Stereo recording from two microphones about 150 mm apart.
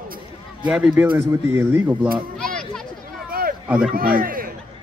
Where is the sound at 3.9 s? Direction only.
75° right (ahead or behind).